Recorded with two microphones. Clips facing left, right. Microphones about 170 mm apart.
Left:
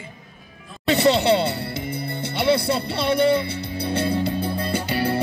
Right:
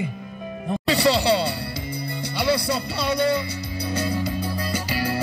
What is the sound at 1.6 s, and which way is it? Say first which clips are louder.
Music: left 2 dB; 55° left (ahead or behind).